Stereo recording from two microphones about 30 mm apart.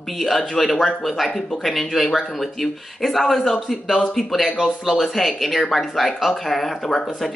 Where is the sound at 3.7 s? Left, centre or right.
Centre.